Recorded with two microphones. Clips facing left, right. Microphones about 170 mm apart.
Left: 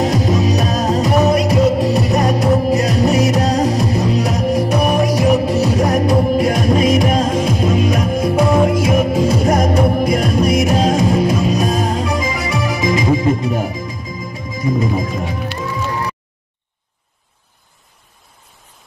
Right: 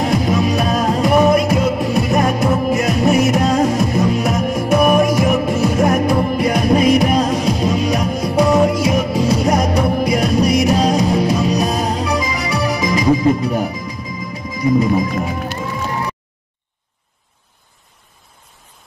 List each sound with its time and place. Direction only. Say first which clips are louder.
0.0 s music: left 1 dB; 40° left (ahead or behind)